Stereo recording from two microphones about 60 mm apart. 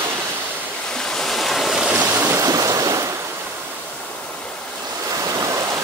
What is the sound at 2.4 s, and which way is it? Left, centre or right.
Waves, right.